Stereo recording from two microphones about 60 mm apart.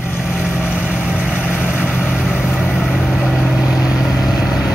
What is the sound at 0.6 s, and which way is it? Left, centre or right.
Vehicle, centre.